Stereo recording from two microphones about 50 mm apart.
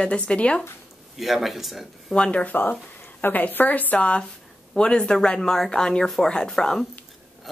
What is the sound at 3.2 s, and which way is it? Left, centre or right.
A woman's voice, left.